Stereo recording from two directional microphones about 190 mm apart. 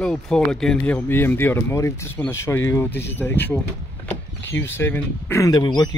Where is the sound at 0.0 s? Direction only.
Centre (ahead or behind).